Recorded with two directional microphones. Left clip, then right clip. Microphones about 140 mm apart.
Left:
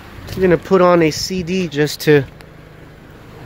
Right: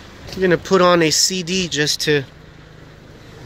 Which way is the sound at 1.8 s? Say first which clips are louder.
Left 6 dB; 35° left (ahead or behind).